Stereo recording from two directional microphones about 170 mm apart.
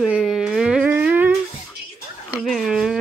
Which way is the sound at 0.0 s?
5° right (ahead or behind).